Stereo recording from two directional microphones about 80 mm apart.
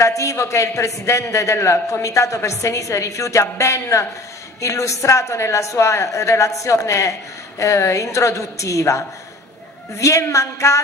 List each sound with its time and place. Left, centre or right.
0.0 s a woman's voice: left